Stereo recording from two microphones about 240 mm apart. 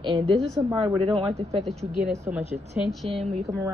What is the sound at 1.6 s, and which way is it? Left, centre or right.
Speech, centre.